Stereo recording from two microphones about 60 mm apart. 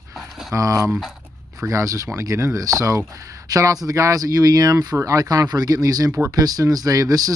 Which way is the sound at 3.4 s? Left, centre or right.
Right.